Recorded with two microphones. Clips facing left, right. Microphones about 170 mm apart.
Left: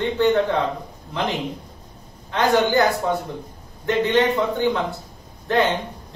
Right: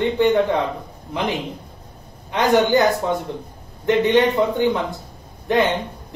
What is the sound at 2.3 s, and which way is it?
Speech, 15° right (ahead or behind).